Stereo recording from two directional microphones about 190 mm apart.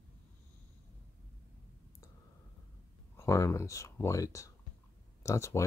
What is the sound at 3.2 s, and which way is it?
Speech, 15° left (ahead or behind).